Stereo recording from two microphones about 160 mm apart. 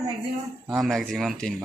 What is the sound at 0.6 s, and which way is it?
Speech, centre (ahead or behind).